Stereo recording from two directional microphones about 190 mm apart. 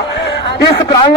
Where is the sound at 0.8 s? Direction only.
20° left (ahead or behind).